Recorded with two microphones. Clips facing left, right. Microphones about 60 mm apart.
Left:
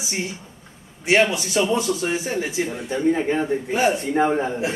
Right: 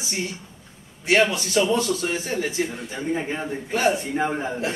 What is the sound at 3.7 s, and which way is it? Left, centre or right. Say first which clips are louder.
Speech: even; centre.